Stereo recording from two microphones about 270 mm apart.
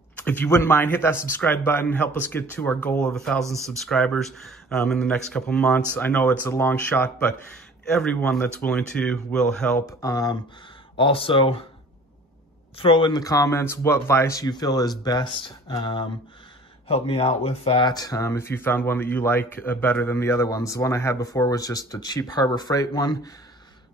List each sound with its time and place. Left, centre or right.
0.2 s speech: centre
12.7 s speech: centre